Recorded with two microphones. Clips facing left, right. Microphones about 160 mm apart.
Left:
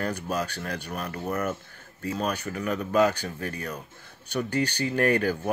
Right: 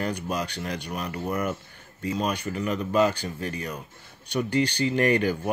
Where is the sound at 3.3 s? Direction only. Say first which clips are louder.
Right 2 dB; 55° left (ahead or behind).